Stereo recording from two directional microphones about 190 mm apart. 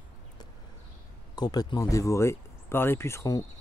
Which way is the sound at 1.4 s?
20° left (ahead or behind).